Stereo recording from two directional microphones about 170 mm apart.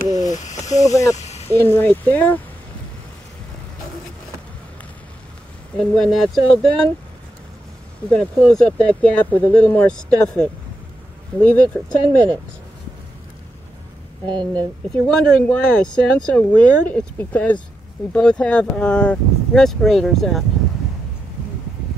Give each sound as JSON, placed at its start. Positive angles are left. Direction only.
{"t": 0.3, "sound": "snake", "side_deg": 45}
{"t": 0.7, "sound": "speech", "side_deg": 20}
{"t": 1.1, "sound": "snake", "side_deg": 40}
{"t": 1.5, "sound": "speech", "side_deg": 10}
{"t": 5.8, "sound": "speech", "side_deg": 0}
{"t": 8.1, "sound": "speech", "side_deg": 5}
{"t": 14.2, "sound": "speech", "side_deg": -25}
{"t": 14.9, "sound": "speech", "side_deg": 5}